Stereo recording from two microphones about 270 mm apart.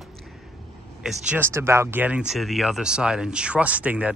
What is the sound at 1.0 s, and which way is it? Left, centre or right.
Speech, centre.